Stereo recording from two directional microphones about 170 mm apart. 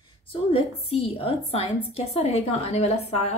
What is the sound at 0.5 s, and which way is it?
A woman's voice, 35° left (ahead or behind).